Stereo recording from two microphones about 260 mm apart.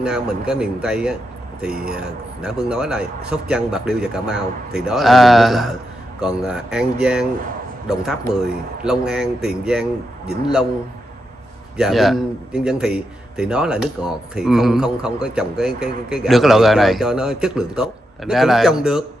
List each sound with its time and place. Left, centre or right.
0.0 s a man's voice: centre
2.4 s a man's voice: centre
11.7 s a man's voice: centre